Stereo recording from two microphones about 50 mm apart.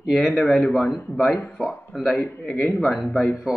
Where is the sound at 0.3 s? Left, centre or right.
Left.